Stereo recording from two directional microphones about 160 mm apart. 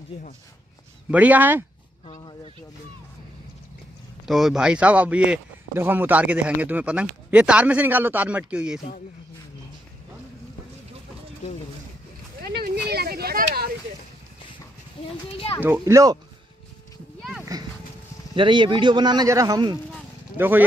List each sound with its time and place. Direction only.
1.1 s speech: 10° right (ahead or behind)
4.3 s speech: centre (ahead or behind)
12.4 s a sound: 75° right (ahead or behind)
15.8 s speech: 20° right (ahead or behind)
17.4 s horse: 20° right (ahead or behind)
18.3 s speech: 30° right (ahead or behind)
20.3 s speech: 10° right (ahead or behind)